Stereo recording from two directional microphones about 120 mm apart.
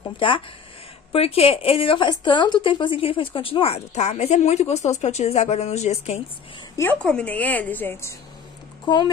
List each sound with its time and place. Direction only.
1.1 s speech: 55° left (ahead or behind)
7.0 s a woman's voice: 10° left (ahead or behind)
8.8 s speech: 40° left (ahead or behind)